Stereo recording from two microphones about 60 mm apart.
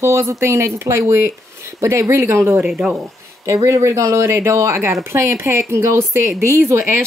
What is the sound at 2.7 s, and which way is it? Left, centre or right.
Speech, centre.